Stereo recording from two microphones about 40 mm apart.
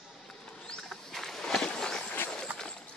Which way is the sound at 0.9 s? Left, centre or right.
Centre.